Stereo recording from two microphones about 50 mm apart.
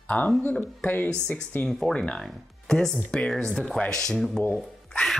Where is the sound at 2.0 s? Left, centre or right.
Centre.